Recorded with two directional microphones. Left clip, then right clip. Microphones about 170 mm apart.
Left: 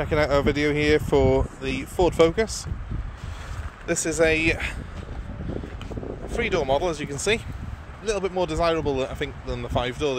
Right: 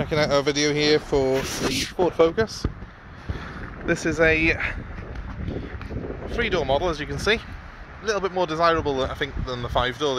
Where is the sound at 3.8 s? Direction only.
45° left (ahead or behind).